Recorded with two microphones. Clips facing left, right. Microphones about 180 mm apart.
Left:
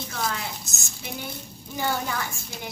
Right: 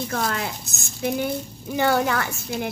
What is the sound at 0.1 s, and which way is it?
Speech, 60° right (ahead or behind).